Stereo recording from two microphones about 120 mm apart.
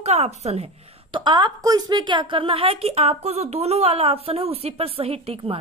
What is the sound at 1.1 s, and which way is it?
A woman's voice, 40° right (ahead or behind).